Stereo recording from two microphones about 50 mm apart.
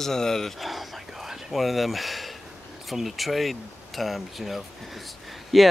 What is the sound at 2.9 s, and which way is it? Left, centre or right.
Speech, centre.